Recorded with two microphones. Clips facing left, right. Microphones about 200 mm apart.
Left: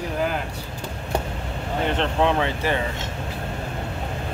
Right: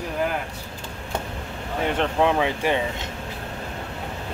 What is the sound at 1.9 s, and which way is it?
Speech, 10° right (ahead or behind).